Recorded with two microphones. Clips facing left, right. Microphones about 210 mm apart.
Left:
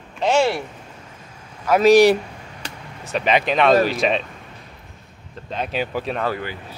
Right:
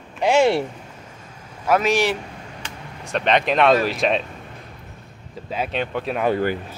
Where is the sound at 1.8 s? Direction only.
40° left (ahead or behind).